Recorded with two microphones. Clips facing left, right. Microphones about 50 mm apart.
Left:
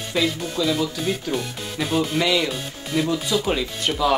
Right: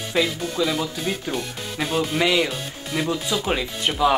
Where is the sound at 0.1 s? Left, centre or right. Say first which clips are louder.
Even; centre.